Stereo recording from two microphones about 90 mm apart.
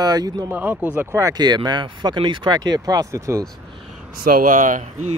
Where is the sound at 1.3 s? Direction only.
50° right (ahead or behind).